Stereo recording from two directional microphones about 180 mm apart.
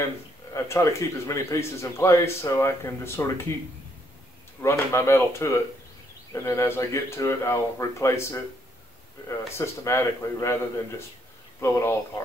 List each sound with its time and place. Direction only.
0.5 s speech: 15° left (ahead or behind)
4.6 s speech: 15° left (ahead or behind)
9.6 s speech: 15° left (ahead or behind)